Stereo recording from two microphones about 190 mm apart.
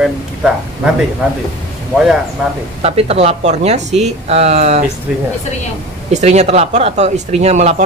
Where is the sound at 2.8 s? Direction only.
30° right (ahead or behind).